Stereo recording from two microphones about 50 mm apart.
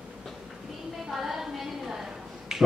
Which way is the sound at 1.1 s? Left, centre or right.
Centre.